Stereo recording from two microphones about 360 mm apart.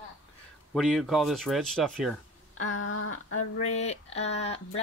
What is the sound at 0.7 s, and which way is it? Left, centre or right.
Speech, centre.